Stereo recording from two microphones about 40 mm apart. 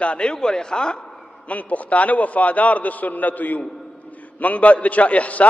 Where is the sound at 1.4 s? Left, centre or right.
Left.